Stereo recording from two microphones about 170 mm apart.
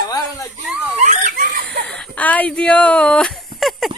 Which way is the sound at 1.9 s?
5° left (ahead or behind).